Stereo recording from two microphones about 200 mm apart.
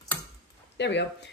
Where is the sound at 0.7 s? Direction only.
60° left (ahead or behind).